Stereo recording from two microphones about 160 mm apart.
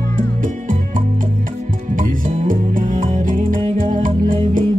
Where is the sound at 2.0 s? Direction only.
55° right (ahead or behind).